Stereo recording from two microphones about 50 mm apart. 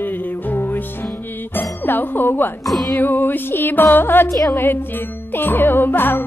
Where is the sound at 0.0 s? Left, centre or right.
Left.